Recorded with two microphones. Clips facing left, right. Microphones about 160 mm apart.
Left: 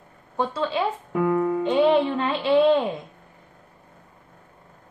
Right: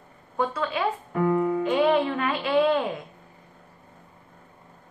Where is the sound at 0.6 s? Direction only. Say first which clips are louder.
Left 3 dB; 25° left (ahead or behind).